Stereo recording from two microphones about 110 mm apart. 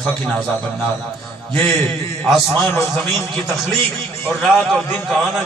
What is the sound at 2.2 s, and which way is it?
Speech, 5° left (ahead or behind).